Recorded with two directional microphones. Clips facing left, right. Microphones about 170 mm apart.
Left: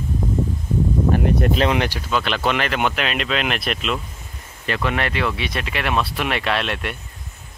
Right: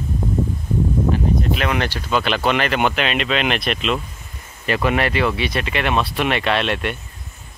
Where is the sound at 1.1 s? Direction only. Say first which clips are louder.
Left 2 dB; 65° left (ahead or behind).